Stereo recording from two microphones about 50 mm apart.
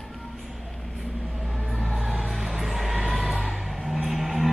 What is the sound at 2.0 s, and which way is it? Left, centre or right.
Music, centre.